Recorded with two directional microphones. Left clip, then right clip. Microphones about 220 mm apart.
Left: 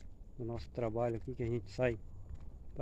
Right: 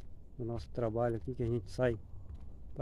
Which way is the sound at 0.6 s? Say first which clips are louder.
Right 2 dB; 10° right (ahead or behind).